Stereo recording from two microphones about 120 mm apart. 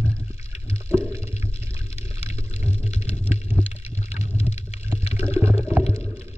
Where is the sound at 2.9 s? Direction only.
70° left (ahead or behind).